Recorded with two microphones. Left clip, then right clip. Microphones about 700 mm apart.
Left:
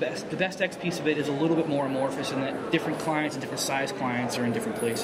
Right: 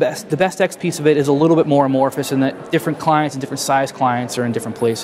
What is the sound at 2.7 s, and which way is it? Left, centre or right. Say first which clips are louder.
Speech: right 11 dB; right.